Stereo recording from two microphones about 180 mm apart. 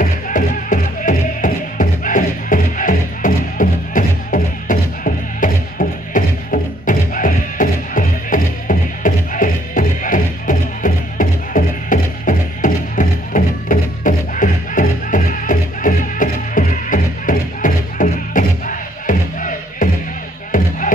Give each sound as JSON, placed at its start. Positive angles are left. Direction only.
{"t": 0.0, "sound": "music", "side_deg": 50}